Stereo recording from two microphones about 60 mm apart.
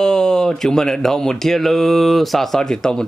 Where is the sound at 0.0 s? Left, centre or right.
Centre.